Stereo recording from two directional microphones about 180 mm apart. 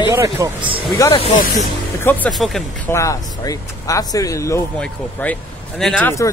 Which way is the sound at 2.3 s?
Centre (ahead or behind).